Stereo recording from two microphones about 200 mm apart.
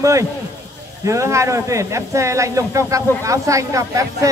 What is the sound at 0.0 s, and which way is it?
Speech, 15° right (ahead or behind).